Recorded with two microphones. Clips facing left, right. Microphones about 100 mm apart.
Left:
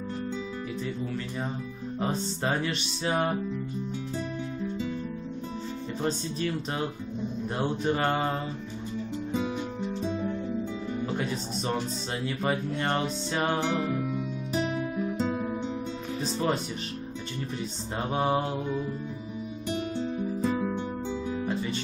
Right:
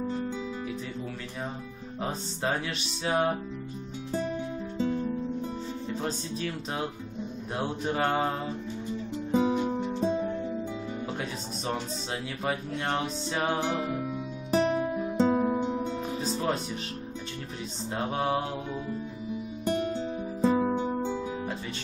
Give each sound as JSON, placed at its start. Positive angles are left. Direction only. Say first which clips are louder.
{"t": 2.0, "sound": "music", "louder": "left 3 dB", "side_deg": 0}
{"t": 4.7, "sound": "music", "louder": "right 9 dB", "side_deg": -40}
{"t": 7.5, "sound": "music", "louder": "left 1 dB", "side_deg": -5}
{"t": 9.3, "sound": "music", "louder": "right 7 dB", "side_deg": -25}
{"t": 11.1, "sound": "speech", "louder": "left 4 dB", "side_deg": 0}
{"t": 12.4, "sound": "music", "louder": "left 1 dB", "side_deg": 0}
{"t": 14.5, "sound": "guitar", "louder": "right 5 dB", "side_deg": -40}
{"t": 15.6, "sound": "music", "louder": "right 3 dB", "side_deg": -5}
{"t": 17.9, "sound": "music", "louder": "left 2 dB", "side_deg": 5}
{"t": 20.4, "sound": "music", "louder": "right 6 dB", "side_deg": -25}